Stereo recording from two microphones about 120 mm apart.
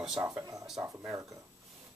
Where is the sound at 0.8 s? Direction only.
15° right (ahead or behind).